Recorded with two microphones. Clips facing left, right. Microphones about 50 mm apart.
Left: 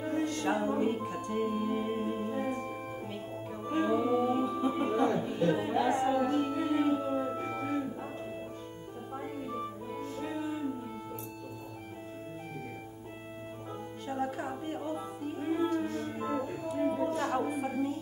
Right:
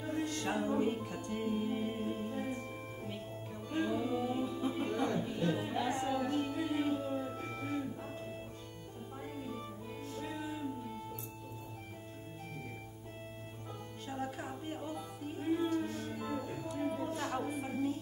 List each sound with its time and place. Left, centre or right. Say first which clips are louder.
0.0 s music: left 5 dB; centre
0.3 s speech: left 4 dB; centre
1.4 s music: left 3 dB; centre
1.7 s organ: left 4 dB; centre
3.6 s music: left 6 dB; left
9.2 s music: left 5 dB; centre
14.0 s music: left 6 dB; centre
16.2 s music: left 6 dB; centre